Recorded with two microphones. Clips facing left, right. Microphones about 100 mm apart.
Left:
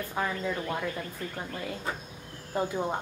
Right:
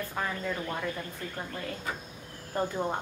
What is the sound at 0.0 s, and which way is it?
Speech, 15° left (ahead or behind).